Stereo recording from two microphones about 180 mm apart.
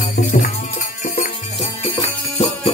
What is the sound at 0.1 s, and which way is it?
Music, 55° left (ahead or behind).